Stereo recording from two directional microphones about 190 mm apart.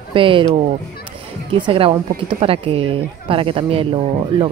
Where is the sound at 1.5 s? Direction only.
30° right (ahead or behind).